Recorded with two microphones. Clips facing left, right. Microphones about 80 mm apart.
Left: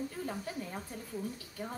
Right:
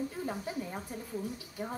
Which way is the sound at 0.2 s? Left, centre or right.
Centre.